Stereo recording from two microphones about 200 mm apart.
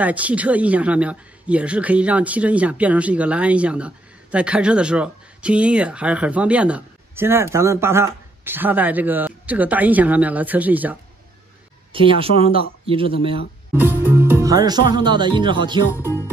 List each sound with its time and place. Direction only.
0.0 s speech: 5° right (ahead or behind)
11.9 s speech: 25° right (ahead or behind)
13.7 s speech: 10° right (ahead or behind)